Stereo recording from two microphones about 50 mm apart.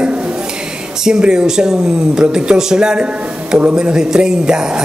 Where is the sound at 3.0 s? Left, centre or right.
Right.